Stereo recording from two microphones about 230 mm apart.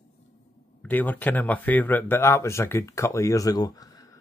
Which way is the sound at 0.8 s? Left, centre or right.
Centre.